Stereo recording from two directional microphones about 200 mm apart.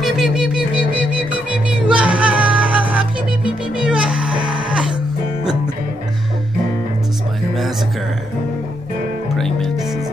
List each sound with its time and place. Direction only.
0.0 s music: centre (ahead or behind)
4.3 s music: 25° right (ahead or behind)
9.3 s music: centre (ahead or behind)